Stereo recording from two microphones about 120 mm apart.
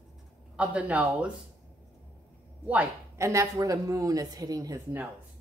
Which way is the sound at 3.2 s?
25° right (ahead or behind).